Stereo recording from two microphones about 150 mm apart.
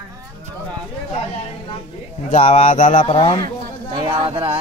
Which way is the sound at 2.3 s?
50° left (ahead or behind).